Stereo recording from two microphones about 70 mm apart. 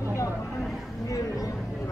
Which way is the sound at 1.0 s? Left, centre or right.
Left.